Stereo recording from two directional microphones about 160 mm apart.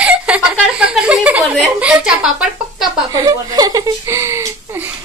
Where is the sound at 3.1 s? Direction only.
25° right (ahead or behind).